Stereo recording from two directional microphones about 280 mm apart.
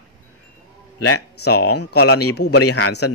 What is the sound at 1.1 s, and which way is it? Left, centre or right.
Speech, left.